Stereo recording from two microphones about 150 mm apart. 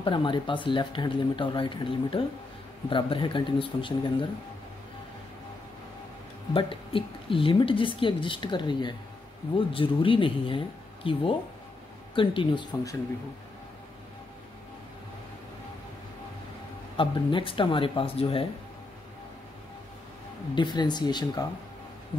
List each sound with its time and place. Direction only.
0.0 s a woman's voice: 35° left (ahead or behind)
6.5 s a woman's voice: 35° left (ahead or behind)
16.9 s a woman's voice: 35° left (ahead or behind)
20.5 s speech: 30° left (ahead or behind)